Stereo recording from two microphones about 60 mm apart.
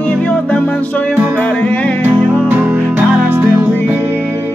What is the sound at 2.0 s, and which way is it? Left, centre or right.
Music, right.